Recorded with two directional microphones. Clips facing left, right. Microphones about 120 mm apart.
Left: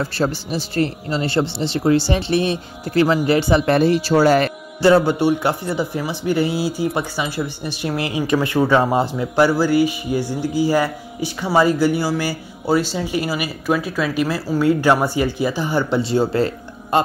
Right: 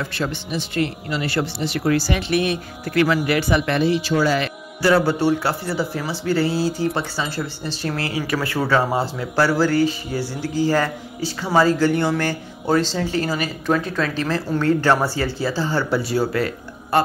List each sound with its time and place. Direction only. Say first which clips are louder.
0.0 s a man's voice: left 5 dB; 35° left (ahead or behind)
4.8 s speech: left 3 dB; 20° left (ahead or behind)